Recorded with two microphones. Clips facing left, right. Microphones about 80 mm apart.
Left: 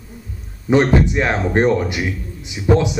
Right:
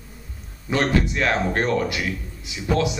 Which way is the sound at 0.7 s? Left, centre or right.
Left.